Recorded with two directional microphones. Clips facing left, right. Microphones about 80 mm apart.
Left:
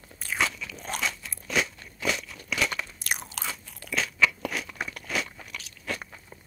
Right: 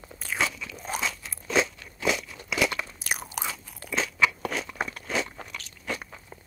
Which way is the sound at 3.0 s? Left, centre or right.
Centre.